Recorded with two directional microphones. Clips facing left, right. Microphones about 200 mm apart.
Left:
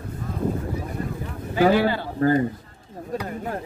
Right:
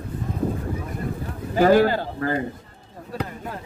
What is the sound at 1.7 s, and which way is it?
Speech, 45° right (ahead or behind).